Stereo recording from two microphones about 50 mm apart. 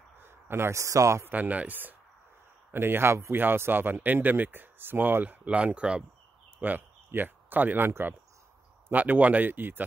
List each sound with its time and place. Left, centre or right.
0.2 s a sound: right
0.7 s speech: right
1.2 s speech: right
2.7 s speech: right
5.8 s speech: centre
7.1 s speech: right
8.9 s speech: right